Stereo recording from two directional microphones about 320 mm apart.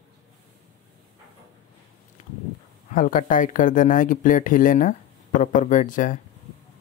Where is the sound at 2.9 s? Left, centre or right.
Left.